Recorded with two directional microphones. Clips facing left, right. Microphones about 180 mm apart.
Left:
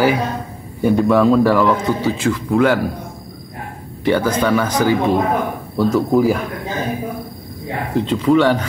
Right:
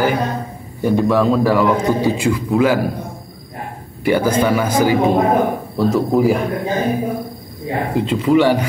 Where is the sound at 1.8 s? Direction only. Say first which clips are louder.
Right 2 dB; 15° right (ahead or behind).